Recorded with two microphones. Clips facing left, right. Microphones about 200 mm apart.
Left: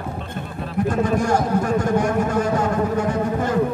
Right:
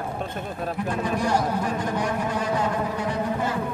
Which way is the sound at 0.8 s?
45° left (ahead or behind).